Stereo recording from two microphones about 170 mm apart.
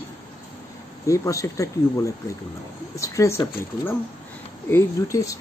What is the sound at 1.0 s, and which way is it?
Speech, 20° left (ahead or behind).